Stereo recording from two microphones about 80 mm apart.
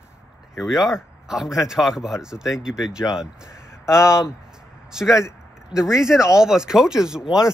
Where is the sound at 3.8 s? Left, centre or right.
Left.